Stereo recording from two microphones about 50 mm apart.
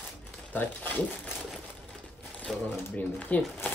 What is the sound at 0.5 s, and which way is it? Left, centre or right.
Speech, left.